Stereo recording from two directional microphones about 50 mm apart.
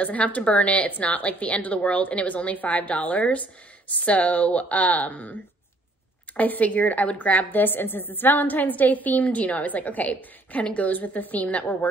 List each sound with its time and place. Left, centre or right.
0.0 s a woman's voice: left
6.3 s a woman's voice: left